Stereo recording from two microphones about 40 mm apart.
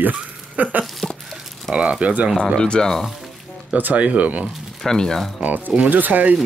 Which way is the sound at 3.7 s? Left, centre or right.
Right.